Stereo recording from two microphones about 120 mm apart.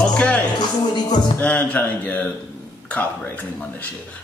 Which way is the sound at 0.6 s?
35° left (ahead or behind).